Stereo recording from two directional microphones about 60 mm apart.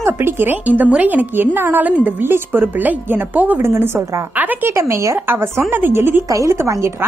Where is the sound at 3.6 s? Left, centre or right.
Right.